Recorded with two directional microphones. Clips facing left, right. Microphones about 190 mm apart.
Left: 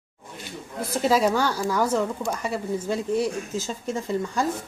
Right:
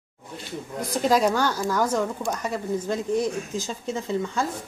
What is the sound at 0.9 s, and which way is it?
A woman's voice, 5° left (ahead or behind).